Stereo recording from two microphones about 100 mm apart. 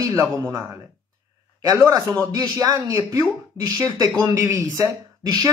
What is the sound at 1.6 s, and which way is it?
Speech, 35° right (ahead or behind).